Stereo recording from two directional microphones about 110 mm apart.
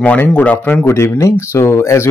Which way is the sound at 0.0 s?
15° left (ahead or behind).